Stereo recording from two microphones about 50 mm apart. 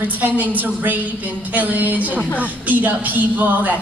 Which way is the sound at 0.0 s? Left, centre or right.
Right.